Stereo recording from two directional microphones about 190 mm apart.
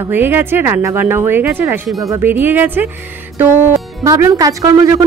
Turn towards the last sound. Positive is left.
turn(degrees=-20)  # may be behind; listen again after turning